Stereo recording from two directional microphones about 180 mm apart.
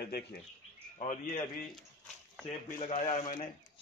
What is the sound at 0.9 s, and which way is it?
Speech, 45° left (ahead or behind).